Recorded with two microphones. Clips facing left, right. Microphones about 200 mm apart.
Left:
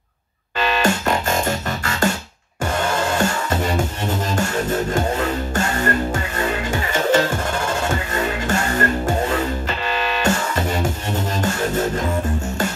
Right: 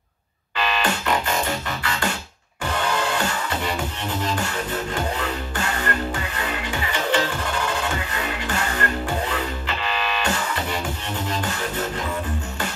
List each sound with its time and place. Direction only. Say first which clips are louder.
0.6 s music: left 5 dB; 45° left (ahead or behind)
4.9 s music: left 5 dB; 45° left (ahead or behind)